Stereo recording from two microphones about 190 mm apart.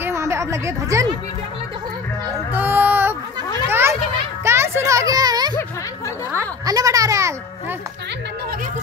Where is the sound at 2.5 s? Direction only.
10° right (ahead or behind).